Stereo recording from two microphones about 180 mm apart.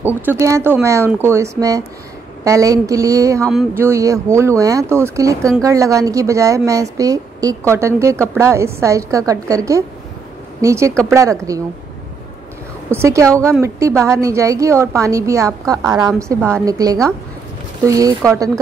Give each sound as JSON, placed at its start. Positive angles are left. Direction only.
{"t": 0.0, "sound": "a woman's voice", "side_deg": -10}
{"t": 12.9, "sound": "a woman's voice", "side_deg": -15}